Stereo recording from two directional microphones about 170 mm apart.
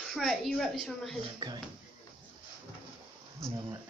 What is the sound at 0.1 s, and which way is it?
A child's voice, centre (ahead or behind).